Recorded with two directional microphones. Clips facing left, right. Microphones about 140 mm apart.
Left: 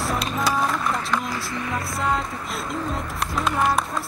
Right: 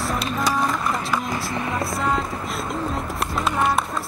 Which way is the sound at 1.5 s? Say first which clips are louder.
Right 2 dB; 25° right (ahead or behind).